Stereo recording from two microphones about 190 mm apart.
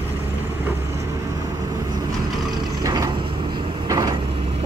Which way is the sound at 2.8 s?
15° right (ahead or behind).